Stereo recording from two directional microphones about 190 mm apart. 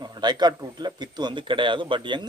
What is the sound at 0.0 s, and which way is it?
Speech, 20° right (ahead or behind).